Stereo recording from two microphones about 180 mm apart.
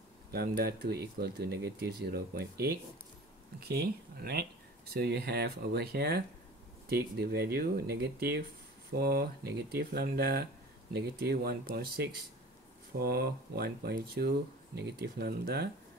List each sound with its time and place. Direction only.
0.3 s speech: 60° right (ahead or behind)